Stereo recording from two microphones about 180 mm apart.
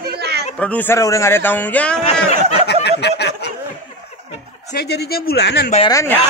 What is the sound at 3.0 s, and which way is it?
Speech, 65° left (ahead or behind).